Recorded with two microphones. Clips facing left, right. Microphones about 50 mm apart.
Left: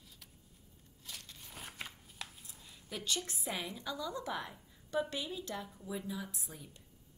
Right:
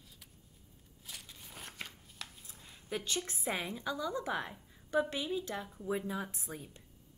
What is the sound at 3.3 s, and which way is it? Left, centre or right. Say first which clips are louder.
A woman's voice: right 3 dB; right.